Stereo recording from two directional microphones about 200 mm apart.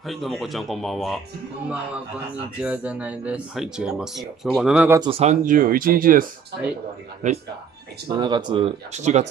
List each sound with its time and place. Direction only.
0.0 s speech: centre (ahead or behind)
2.6 s speech: 5° right (ahead or behind)
5.0 s speech: 30° right (ahead or behind)
7.2 s speech: 35° right (ahead or behind)
8.1 s speech: 20° right (ahead or behind)